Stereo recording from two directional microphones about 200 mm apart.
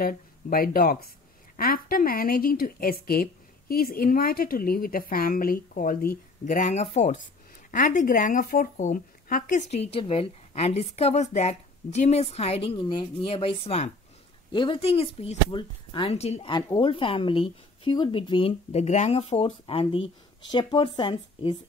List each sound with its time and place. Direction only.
0.0 s a woman's voice: 45° left (ahead or behind); by 21.5 s 25° left (ahead or behind)